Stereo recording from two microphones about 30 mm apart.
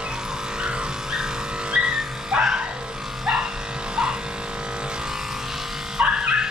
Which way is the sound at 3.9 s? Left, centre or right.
Right.